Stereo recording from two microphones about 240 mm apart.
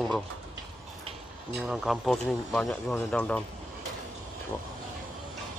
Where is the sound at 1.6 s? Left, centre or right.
Centre.